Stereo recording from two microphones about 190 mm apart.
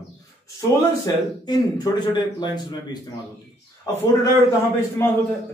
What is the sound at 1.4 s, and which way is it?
A man's voice, 20° left (ahead or behind).